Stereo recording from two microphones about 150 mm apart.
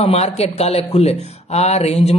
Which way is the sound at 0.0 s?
45° left (ahead or behind).